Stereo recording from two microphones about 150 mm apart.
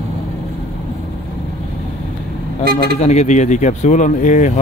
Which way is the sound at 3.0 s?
50° left (ahead or behind).